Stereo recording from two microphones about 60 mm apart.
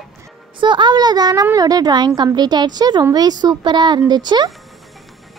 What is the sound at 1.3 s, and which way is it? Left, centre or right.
Speech, right.